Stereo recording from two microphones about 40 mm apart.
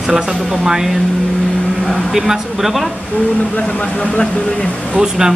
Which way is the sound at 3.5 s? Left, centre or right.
Left.